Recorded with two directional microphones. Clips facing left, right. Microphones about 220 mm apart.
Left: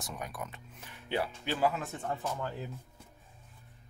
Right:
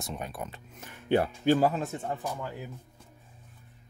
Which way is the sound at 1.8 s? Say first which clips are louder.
Right 4 dB; 25° right (ahead or behind).